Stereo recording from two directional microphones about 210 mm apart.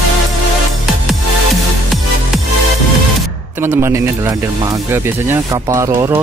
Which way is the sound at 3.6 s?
10° right (ahead or behind).